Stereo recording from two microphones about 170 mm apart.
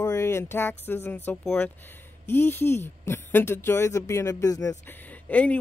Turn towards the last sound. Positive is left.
turn(degrees=10)  # may be behind; listen again after turning